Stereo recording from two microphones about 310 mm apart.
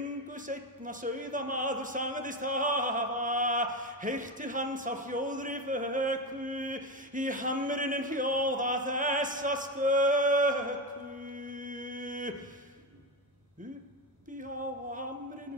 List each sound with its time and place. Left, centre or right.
0.0 s speech: right
11.2 s mantra: right
14.3 s a sound: right